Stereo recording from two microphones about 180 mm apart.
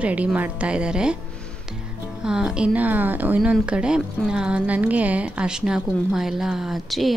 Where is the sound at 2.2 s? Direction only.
5° right (ahead or behind).